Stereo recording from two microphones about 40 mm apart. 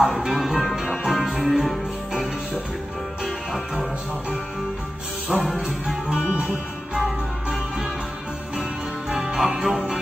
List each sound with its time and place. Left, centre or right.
0.2 s music: centre
3.3 s music: centre
5.3 s music: centre
6.0 s music: centre
9.2 s music: centre